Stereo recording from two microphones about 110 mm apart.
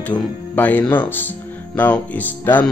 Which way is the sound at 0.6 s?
15° left (ahead or behind).